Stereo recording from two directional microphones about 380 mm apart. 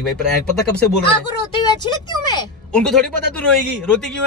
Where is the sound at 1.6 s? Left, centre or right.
Centre.